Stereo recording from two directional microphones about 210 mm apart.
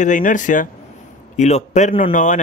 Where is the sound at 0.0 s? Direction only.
35° left (ahead or behind).